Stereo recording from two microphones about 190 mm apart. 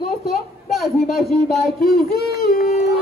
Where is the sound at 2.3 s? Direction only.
55° left (ahead or behind).